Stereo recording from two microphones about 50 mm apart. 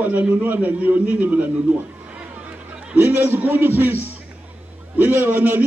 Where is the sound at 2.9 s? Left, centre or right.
Right.